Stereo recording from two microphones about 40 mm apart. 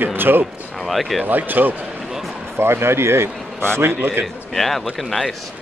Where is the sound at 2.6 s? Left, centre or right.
Right.